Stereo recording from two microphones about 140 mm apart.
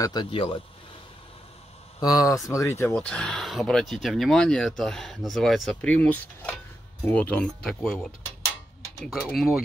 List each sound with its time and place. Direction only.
0.0 s speech: 30° left (ahead or behind)
2.0 s speech: 25° left (ahead or behind)
2.9 s speech: 10° left (ahead or behind)